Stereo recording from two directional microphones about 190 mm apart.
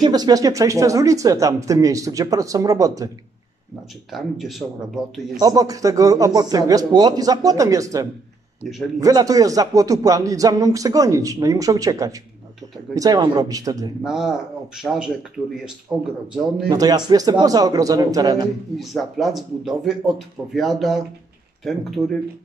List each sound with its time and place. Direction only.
0.0 s speech: 20° right (ahead or behind)
4.1 s speech: centre (ahead or behind)
5.4 s a man's voice: 20° right (ahead or behind)
14.0 s speech: 5° right (ahead or behind)
16.6 s a man's voice: 20° right (ahead or behind)
18.8 s speech: centre (ahead or behind)